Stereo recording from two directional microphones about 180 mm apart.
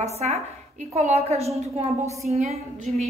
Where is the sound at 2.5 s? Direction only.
Centre (ahead or behind).